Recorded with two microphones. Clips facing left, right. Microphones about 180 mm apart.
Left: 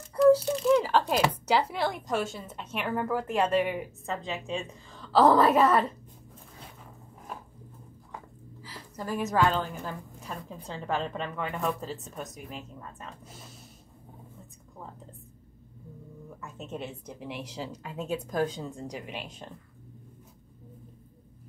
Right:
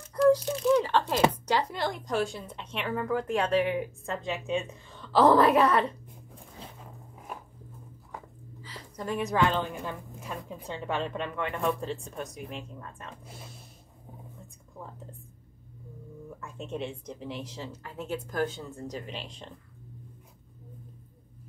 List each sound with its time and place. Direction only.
0.1 s a sound: 5° left (ahead or behind)
1.3 s speech: 10° left (ahead or behind)
8.6 s a woman's voice: 5° left (ahead or behind)
16.3 s speech: 5° left (ahead or behind)